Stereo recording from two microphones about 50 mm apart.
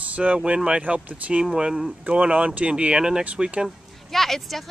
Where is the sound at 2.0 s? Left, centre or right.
Right.